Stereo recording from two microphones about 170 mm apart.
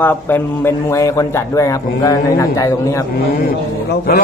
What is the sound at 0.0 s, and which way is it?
A man's voice, 10° left (ahead or behind).